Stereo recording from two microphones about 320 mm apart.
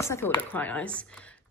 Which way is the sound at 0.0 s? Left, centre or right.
Centre.